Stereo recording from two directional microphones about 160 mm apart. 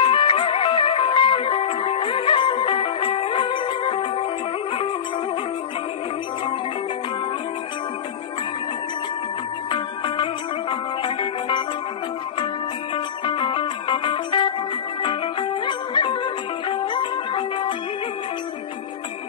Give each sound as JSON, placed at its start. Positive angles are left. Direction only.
{"t": 0.0, "sound": "music", "side_deg": 35}
{"t": 9.7, "sound": "music", "side_deg": 30}
{"t": 12.9, "sound": "music", "side_deg": 30}
{"t": 15.6, "sound": "music", "side_deg": 30}